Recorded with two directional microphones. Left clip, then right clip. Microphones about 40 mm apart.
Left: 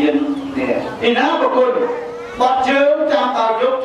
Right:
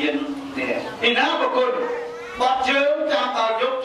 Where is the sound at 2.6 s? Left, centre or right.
Right.